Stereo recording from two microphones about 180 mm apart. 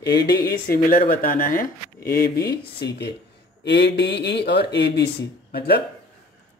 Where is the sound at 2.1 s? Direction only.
60° left (ahead or behind).